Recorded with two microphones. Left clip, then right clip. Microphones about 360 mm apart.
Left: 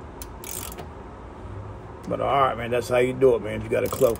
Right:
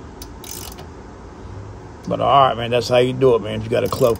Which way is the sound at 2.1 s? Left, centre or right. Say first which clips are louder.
Right 7 dB; right.